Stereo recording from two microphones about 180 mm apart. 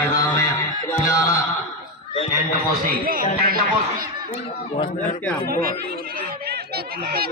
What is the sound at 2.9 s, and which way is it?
Speech, 50° right (ahead or behind).